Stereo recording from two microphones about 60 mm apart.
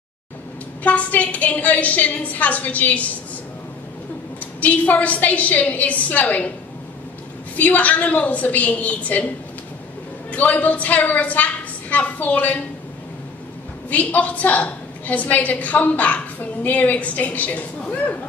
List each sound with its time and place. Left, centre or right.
0.8 s a woman's voice: left
4.6 s a woman's voice: left
7.5 s a woman's voice: left
10.3 s a woman's voice: left
13.8 s a woman's voice: left